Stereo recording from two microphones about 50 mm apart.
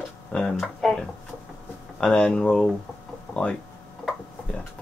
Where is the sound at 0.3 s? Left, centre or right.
Centre.